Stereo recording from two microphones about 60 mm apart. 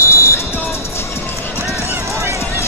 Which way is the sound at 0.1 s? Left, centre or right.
Left.